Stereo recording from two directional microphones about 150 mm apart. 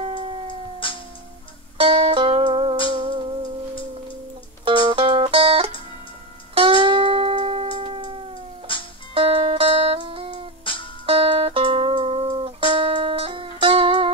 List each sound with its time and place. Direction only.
0.1 s howl: 35° right (ahead or behind)
0.8 s music: 35° left (ahead or behind)
1.8 s music: 35° right (ahead or behind)
4.6 s music: 35° right (ahead or behind)
8.7 s music: 35° left (ahead or behind)
9.1 s music: 40° right (ahead or behind)
10.6 s music: 35° left (ahead or behind)
11.1 s music: 40° right (ahead or behind)